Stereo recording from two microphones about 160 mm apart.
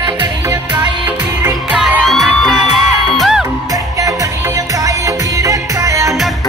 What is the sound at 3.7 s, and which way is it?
Music, 20° right (ahead or behind).